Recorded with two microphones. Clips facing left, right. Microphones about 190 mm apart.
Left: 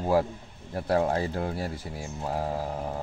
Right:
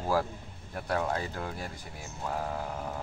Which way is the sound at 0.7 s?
30° left (ahead or behind).